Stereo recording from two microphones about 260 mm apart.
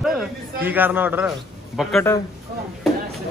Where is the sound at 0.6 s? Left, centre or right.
Centre.